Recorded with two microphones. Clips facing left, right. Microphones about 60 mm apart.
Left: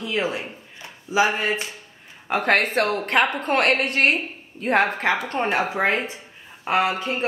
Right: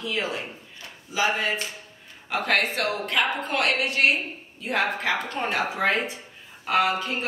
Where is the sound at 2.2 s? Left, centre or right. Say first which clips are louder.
Left 4 dB; left.